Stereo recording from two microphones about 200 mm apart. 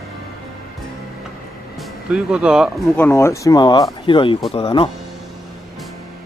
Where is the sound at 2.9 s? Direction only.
10° left (ahead or behind); by 4.9 s 25° left (ahead or behind).